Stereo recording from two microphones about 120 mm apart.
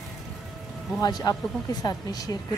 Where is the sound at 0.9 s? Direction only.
35° left (ahead or behind).